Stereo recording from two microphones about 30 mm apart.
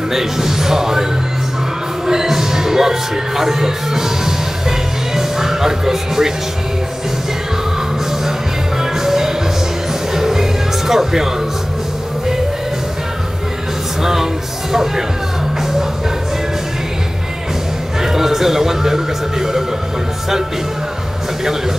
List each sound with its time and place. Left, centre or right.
0.1 s a man's voice: centre
2.0 s music: centre
8.9 s music: centre
14.0 s speech: centre
18.0 s speech: centre